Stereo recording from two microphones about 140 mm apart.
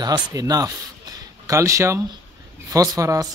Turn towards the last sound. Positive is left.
turn(degrees=-25)  # may be behind; listen again after turning